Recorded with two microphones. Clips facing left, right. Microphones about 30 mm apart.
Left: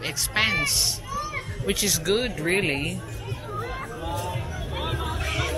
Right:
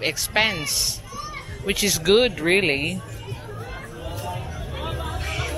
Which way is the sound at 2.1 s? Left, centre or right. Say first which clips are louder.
Right 8 dB; right.